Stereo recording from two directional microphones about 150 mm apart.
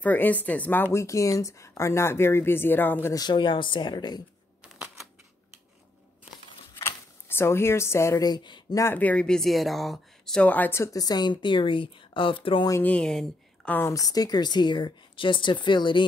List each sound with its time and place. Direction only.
0.0 s speech: 10° left (ahead or behind); by 4.2 s 30° left (ahead or behind)
4.7 s typewriter: 5° right (ahead or behind)
6.8 s speech: 15° left (ahead or behind)
8.9 s speech: 10° left (ahead or behind); by 12.6 s 35° left (ahead or behind)
12.6 s speech: 20° left (ahead or behind)
12.9 s speech: 5° left (ahead or behind)
13.7 s speech: 15° left (ahead or behind)